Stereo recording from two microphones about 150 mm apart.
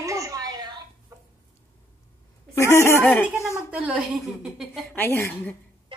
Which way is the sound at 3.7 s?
10° right (ahead or behind).